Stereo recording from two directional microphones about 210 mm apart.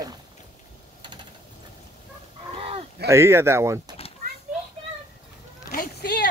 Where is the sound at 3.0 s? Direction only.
10° right (ahead or behind).